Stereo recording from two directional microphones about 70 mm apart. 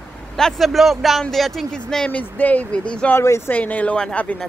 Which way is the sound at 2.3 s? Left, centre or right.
Left.